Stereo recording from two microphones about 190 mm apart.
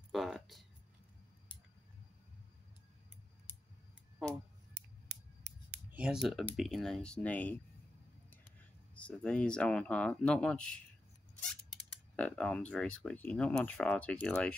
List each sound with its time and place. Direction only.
0.1 s a sound: centre (ahead or behind)
5.0 s scissors: 65° right (ahead or behind)
5.9 s speech: 5° right (ahead or behind)
8.9 s speech: 5° left (ahead or behind)
11.9 s speech: 5° left (ahead or behind)